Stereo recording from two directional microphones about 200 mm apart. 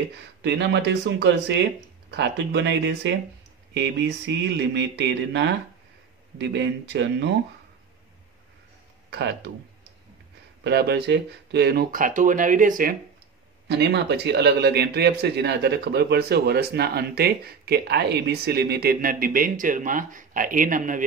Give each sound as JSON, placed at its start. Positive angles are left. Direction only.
{"t": 0.4, "sound": "mantra", "side_deg": -60}
{"t": 9.1, "sound": "mantra", "side_deg": -55}
{"t": 10.6, "sound": "speech", "side_deg": -55}
{"t": 13.7, "sound": "speech", "side_deg": -55}